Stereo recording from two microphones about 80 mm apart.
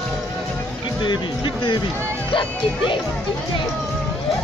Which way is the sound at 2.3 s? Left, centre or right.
Left.